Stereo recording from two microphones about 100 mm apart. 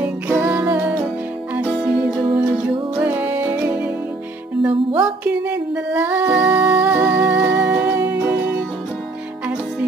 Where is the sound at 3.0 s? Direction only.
20° right (ahead or behind).